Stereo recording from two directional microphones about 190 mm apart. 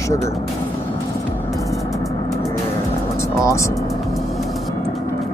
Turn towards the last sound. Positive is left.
turn(degrees=15)  # may be behind; listen again after turning